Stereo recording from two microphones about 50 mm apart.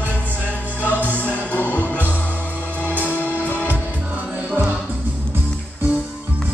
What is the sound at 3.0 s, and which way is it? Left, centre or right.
Music, left.